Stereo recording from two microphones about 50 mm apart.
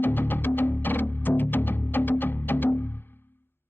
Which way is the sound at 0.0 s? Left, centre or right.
Left.